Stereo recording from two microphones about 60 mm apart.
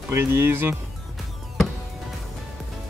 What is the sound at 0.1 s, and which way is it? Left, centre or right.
Speech, right.